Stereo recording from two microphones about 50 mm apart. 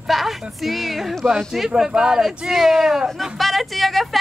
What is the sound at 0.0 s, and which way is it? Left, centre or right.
Speech, centre.